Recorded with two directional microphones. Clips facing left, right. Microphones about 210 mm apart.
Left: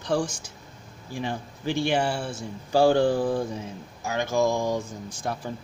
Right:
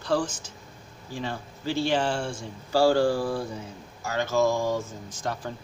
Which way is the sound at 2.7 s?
20° left (ahead or behind).